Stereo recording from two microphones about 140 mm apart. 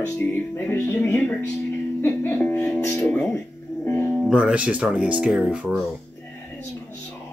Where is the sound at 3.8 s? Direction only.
15° left (ahead or behind).